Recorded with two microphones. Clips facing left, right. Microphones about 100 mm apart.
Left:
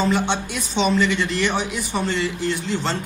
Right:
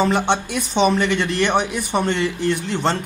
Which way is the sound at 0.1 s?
55° right (ahead or behind).